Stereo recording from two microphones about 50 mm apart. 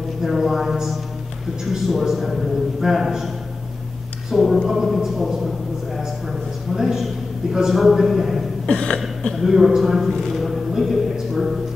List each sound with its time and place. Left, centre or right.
0.2 s a man's voice: centre
4.3 s a man's voice: centre
6.7 s a man's voice: centre
8.6 s a sound: centre
9.4 s a man's voice: centre
10.3 s a sound: centre